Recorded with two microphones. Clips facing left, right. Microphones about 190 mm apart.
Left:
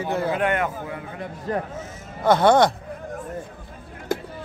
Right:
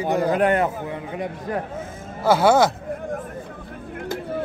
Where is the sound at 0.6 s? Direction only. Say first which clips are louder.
Right 3 dB; 20° right (ahead or behind).